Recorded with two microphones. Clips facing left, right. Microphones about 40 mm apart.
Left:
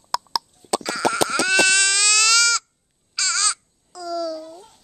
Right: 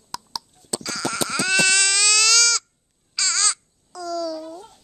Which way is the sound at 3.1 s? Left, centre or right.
Centre.